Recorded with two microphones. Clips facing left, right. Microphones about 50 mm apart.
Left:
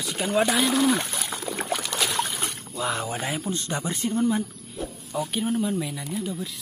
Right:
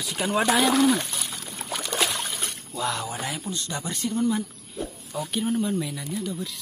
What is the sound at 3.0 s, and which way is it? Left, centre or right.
Speech, left.